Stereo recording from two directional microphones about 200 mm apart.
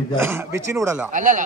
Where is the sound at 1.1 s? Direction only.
40° right (ahead or behind).